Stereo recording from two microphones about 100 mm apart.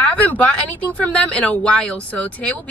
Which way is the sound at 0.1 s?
15° left (ahead or behind).